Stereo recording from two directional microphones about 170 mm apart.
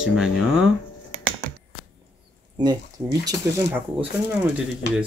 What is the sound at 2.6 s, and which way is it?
Speech, 25° right (ahead or behind).